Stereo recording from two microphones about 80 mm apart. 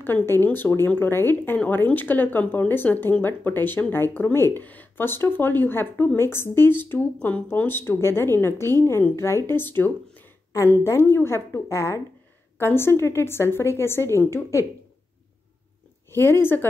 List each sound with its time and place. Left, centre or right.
0.0 s a woman's voice: left
9.5 s a sound: left
10.6 s a woman's voice: left
16.1 s a woman's voice: left